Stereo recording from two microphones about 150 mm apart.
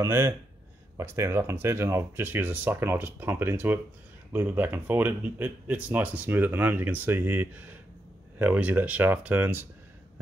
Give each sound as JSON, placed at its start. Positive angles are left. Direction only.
{"t": 0.0, "sound": "speech", "side_deg": -15}